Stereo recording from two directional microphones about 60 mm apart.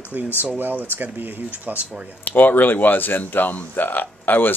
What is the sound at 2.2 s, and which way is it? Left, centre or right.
Speech, left.